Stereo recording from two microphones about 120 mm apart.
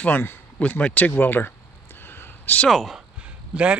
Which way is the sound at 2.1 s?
15° left (ahead or behind).